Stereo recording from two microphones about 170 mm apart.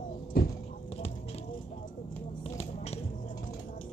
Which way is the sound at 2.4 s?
35° left (ahead or behind).